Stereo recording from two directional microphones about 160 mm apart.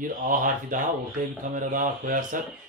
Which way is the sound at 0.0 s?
60° right (ahead or behind).